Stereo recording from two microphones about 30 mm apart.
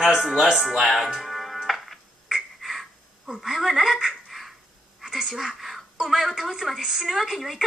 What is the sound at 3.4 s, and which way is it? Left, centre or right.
Speech, centre.